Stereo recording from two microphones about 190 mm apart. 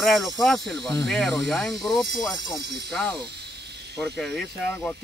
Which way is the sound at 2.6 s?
60° right (ahead or behind).